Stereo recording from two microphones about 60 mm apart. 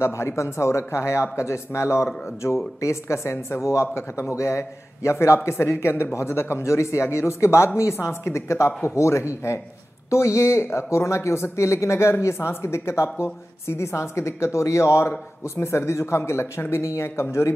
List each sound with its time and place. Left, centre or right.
0.0 s speech: left